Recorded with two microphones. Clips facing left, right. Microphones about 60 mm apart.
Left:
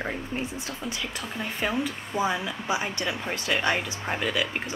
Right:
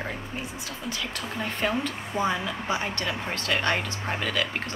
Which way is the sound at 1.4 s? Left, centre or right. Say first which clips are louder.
Right 1 dB; centre.